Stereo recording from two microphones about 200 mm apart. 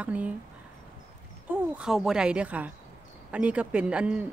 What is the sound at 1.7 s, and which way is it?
Speech, 5° right (ahead or behind).